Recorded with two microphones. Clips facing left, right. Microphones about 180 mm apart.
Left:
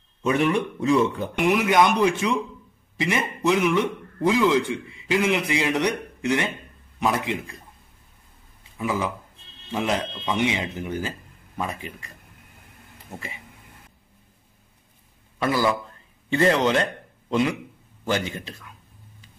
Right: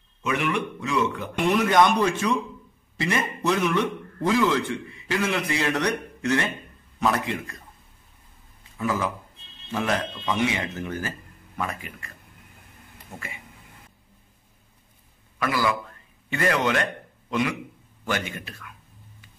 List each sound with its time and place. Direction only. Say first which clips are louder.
0.2 s speech: left 4 dB; 35° left (ahead or behind)
1.7 s a man's voice: left 1 dB; 10° left (ahead or behind)
8.7 s a man's voice: even; 15° left (ahead or behind)
15.3 s a man's voice: left 3 dB; 25° left (ahead or behind)